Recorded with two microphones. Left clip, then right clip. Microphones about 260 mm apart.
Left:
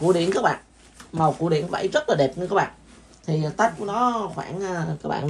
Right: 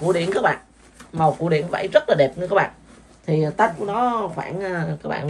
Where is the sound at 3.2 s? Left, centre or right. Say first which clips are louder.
Right 3 dB; centre.